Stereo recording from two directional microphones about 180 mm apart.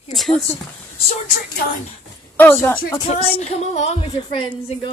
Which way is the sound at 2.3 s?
10° left (ahead or behind).